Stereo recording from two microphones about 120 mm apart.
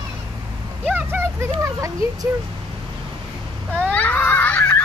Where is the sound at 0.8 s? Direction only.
20° right (ahead or behind).